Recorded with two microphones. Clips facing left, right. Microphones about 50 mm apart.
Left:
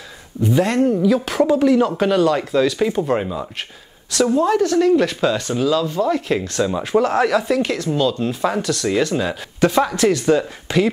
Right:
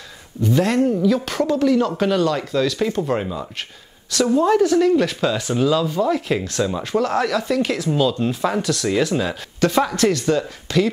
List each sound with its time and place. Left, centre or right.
0.4 s speech: centre